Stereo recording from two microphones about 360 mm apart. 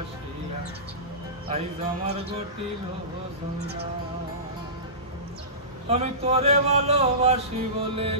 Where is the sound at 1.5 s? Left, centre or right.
Centre.